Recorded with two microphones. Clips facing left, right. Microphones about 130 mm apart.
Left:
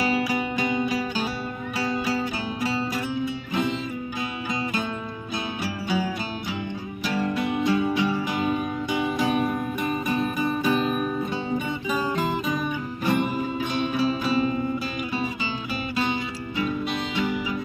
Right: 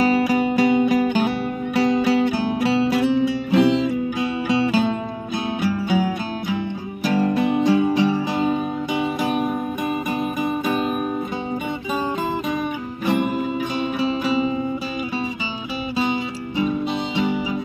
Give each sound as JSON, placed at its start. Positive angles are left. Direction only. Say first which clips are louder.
{"t": 0.0, "sound": "music", "louder": "right 7 dB", "side_deg": -45}
{"t": 5.6, "sound": "music", "louder": "right 6 dB", "side_deg": -55}
{"t": 7.1, "sound": "music", "louder": "right 6 dB", "side_deg": -45}
{"t": 9.2, "sound": "music", "louder": "right 2 dB", "side_deg": -5}
{"t": 13.0, "sound": "music", "louder": "right 3 dB", "side_deg": -20}